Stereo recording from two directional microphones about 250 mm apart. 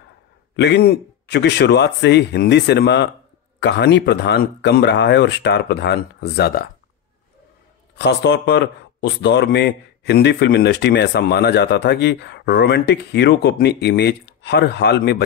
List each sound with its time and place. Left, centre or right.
0.6 s a man's voice: left
7.9 s a man's voice: left